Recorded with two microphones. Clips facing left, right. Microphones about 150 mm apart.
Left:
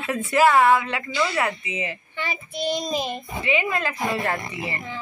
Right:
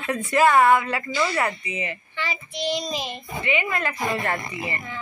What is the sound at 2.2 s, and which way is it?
Child singing, 50° left (ahead or behind).